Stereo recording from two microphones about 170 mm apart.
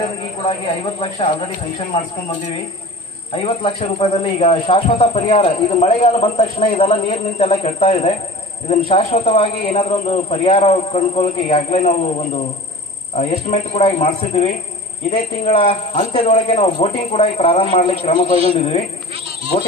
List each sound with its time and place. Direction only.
0.5 s speech: 30° left (ahead or behind)
3.6 s speech: 35° left (ahead or behind)